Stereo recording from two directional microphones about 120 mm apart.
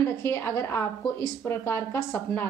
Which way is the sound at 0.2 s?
20° left (ahead or behind).